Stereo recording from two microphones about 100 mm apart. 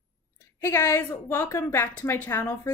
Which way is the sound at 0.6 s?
25° left (ahead or behind).